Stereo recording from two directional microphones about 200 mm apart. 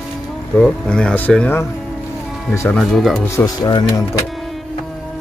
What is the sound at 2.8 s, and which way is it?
Speech, centre (ahead or behind).